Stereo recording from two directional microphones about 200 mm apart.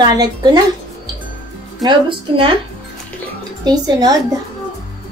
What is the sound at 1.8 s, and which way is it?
Child singing, 25° right (ahead or behind).